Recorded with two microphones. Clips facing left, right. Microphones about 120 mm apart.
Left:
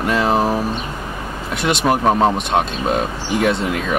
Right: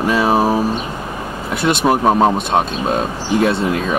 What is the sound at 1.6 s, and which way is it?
Speech, centre (ahead or behind).